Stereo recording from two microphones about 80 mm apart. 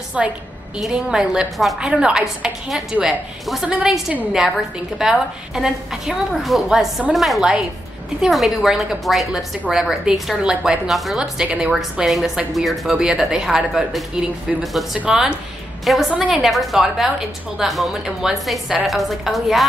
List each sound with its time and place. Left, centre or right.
0.2 s a woman's voice: centre
11.1 s a woman's voice: centre
15.0 s a woman's voice: centre
15.8 s a woman's voice: centre